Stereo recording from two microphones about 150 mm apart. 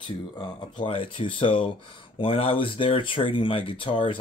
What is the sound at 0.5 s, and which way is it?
A man's voice, 35° left (ahead or behind).